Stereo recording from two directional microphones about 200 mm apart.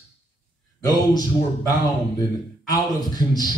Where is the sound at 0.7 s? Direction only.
20° left (ahead or behind).